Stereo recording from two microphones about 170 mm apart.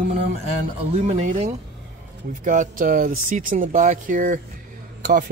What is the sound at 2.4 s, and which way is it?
Speech, 50° right (ahead or behind).